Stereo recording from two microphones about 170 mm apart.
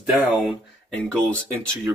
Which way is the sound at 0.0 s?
10° right (ahead or behind).